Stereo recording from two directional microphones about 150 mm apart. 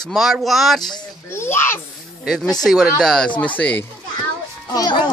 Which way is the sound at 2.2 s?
Centre (ahead or behind).